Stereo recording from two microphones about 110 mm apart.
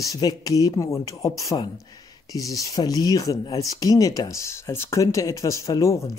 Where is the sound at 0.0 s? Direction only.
35° left (ahead or behind).